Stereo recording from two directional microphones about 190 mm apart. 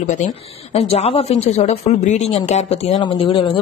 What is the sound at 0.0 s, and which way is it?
Speech, 40° left (ahead or behind).